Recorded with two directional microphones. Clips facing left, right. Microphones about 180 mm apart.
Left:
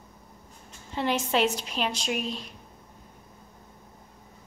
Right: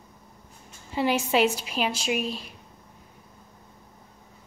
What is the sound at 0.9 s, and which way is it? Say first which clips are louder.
A woman's voice: right 3 dB; 5° right (ahead or behind).